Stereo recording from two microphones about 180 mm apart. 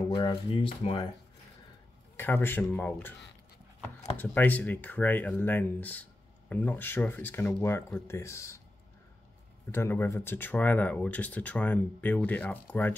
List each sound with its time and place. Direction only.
0.1 s speech: 25° left (ahead or behind)
2.1 s speech: 10° left (ahead or behind)
4.2 s speech: 10° left (ahead or behind)
9.7 s speech: 15° left (ahead or behind)